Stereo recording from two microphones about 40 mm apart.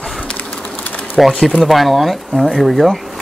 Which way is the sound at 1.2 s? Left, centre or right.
Centre.